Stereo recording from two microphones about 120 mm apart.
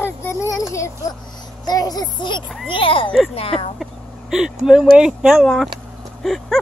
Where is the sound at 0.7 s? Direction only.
25° left (ahead or behind); by 3.7 s 55° left (ahead or behind).